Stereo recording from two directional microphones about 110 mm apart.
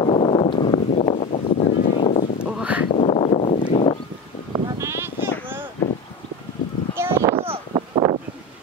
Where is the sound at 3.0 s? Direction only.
70° left (ahead or behind).